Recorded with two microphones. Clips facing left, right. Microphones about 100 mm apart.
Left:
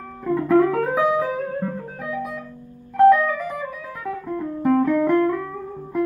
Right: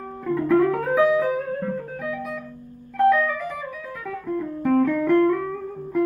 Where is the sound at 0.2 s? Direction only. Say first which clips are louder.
Left 2 dB; 15° left (ahead or behind).